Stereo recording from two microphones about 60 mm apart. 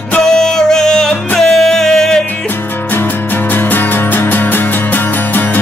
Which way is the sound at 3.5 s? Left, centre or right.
Left.